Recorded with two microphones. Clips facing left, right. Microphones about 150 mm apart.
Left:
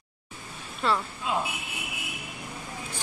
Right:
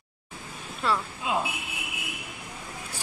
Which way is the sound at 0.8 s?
5° right (ahead or behind).